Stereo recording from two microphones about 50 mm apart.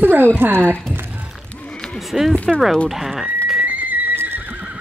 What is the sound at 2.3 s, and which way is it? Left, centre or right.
Speech, left.